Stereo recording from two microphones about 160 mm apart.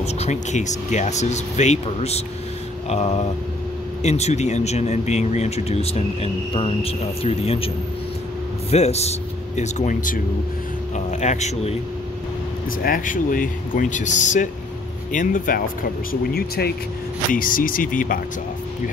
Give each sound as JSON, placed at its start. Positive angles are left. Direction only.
{"t": 0.0, "sound": "speech", "side_deg": 45}
{"t": 12.8, "sound": "speech", "side_deg": 60}
{"t": 17.3, "sound": "speech", "side_deg": 60}